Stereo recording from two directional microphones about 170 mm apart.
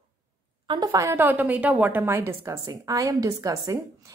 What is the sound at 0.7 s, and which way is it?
A woman's voice, 20° right (ahead or behind).